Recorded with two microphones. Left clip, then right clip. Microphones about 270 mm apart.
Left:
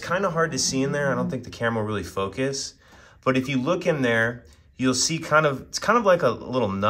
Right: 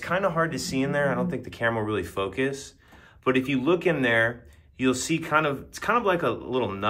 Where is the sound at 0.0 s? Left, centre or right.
Centre.